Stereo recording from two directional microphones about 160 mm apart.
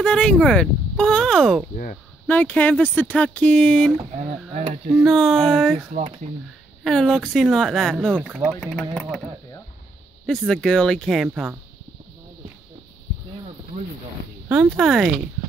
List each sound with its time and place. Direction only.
0.0 s speech: 5° left (ahead or behind)
4.6 s speech: 45° right (ahead or behind)
4.9 s speech: centre (ahead or behind)
5.9 s speech: 50° right (ahead or behind)
6.8 s speech: 5° left (ahead or behind)
10.2 s speech: centre (ahead or behind)
14.5 s speech: 5° right (ahead or behind)